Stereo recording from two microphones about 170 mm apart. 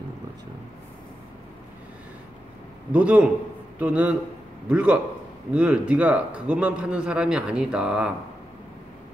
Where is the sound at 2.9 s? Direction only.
10° right (ahead or behind).